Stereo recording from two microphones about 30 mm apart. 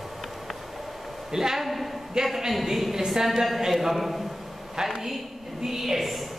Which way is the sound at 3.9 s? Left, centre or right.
Centre.